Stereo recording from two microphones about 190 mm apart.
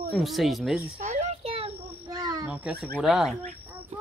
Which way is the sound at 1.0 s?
35° right (ahead or behind).